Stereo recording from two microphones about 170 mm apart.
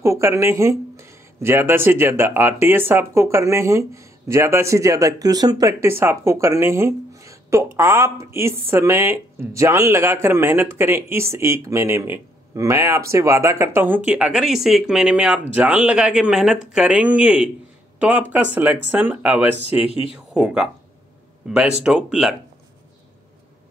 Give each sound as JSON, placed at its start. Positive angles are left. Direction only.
{"t": 0.0, "sound": "speech", "side_deg": -15}
{"t": 19.9, "sound": "speech", "side_deg": 35}
{"t": 20.3, "sound": "speech", "side_deg": -5}